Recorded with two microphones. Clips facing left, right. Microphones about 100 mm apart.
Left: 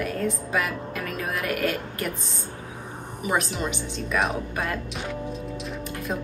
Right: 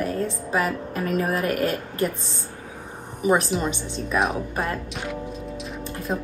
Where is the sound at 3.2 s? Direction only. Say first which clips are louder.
Right 5 dB; 30° right (ahead or behind).